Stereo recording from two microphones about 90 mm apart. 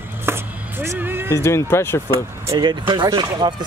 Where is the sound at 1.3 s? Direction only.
30° left (ahead or behind).